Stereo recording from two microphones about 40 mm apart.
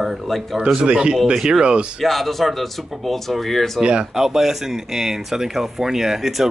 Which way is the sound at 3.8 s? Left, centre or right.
Right.